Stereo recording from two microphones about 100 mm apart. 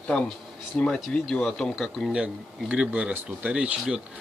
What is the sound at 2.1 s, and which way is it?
Speech, 10° right (ahead or behind).